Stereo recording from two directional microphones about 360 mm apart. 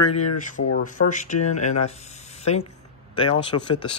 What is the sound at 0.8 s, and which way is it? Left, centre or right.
Speech, left.